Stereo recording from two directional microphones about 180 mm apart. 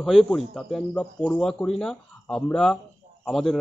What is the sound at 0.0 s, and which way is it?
Speech, centre (ahead or behind).